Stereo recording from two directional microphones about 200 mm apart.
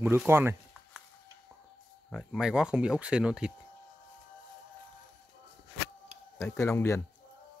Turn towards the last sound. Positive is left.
turn(degrees=15)  # may be behind; listen again after turning